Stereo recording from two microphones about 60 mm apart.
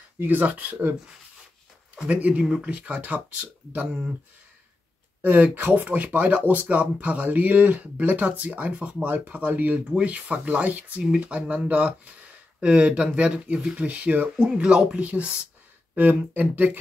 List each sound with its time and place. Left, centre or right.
0.2 s speech: right
2.0 s speech: right
5.2 s speech: right